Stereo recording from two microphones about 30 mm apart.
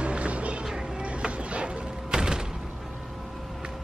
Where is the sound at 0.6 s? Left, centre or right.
Right.